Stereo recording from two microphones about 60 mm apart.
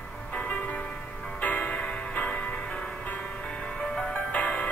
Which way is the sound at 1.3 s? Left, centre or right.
Left.